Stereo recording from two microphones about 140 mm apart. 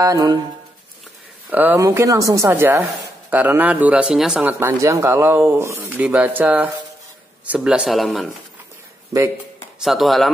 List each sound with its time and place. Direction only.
0.0 s speech: 25° right (ahead or behind)
1.5 s a woman's voice: 15° right (ahead or behind)
1.9 s a woman's voice: 25° right (ahead or behind); by 8.4 s centre (ahead or behind)
9.8 s speech: centre (ahead or behind)